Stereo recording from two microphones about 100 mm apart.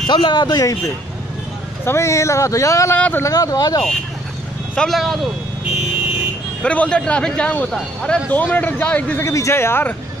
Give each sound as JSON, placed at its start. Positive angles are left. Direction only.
{"t": 0.0, "sound": "speech", "side_deg": 50}
{"t": 1.9, "sound": "speech", "side_deg": 30}
{"t": 3.0, "sound": "speech", "side_deg": 20}
{"t": 3.3, "sound": "speech", "side_deg": 35}
{"t": 4.7, "sound": "speech", "side_deg": 0}
{"t": 6.6, "sound": "speech", "side_deg": 10}
{"t": 9.2, "sound": "speech", "side_deg": 30}